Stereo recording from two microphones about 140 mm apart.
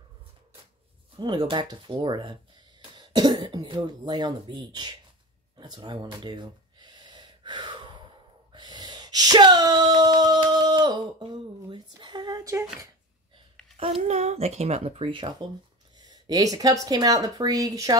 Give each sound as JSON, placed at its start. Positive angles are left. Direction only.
{"t": 1.2, "sound": "speech", "side_deg": -35}
{"t": 5.6, "sound": "gasp", "side_deg": -30}
{"t": 8.5, "sound": "a sound", "side_deg": -30}
{"t": 11.7, "sound": "speech", "side_deg": -35}
{"t": 13.7, "sound": "speech", "side_deg": -45}
{"t": 16.1, "sound": "speech", "side_deg": -25}